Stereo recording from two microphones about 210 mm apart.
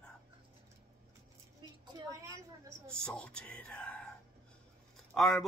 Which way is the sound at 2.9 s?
5° left (ahead or behind).